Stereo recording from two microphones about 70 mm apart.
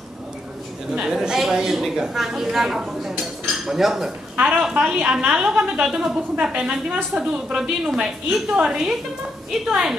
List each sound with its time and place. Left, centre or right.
0.9 s a woman's voice: centre
4.4 s a woman's voice: centre